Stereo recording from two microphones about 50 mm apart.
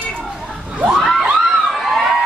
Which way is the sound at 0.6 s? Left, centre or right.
Right.